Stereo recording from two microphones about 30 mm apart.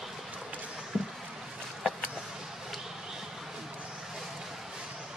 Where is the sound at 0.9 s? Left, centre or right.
Centre.